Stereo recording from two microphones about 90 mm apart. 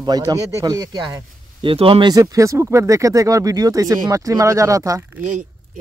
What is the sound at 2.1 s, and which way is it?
Speech, 40° right (ahead or behind).